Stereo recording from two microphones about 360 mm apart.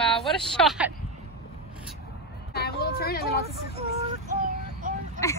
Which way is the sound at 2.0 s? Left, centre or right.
Left.